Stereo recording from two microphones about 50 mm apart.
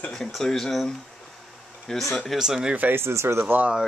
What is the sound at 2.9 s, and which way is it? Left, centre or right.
Speech, right.